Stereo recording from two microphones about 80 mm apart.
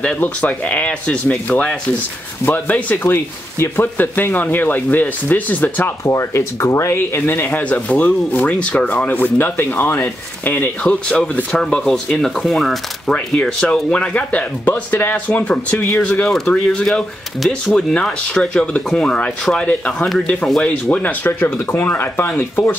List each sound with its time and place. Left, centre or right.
0.0 s speech: centre
6.0 s speech: left